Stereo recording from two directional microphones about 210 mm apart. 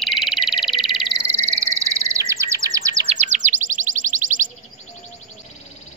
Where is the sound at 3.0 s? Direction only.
35° right (ahead or behind).